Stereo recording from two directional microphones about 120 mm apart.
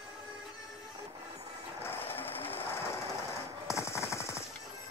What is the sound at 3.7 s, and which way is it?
Machine gun, 25° left (ahead or behind).